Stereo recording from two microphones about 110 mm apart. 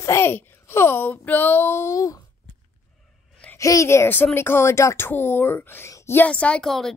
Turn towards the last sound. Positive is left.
turn(degrees=5)  # may be behind; listen again after turning